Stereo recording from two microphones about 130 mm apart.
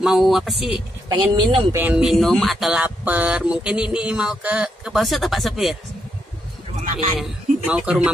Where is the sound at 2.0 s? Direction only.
Centre (ahead or behind).